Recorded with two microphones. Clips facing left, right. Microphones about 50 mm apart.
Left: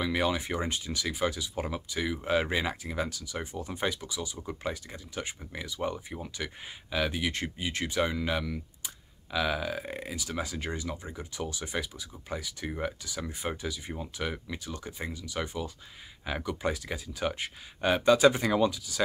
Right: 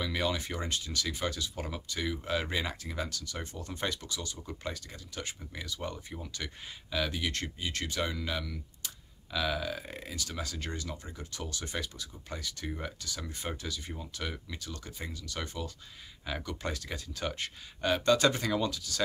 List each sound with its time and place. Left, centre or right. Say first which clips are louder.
0.0 s speech: left 4 dB; centre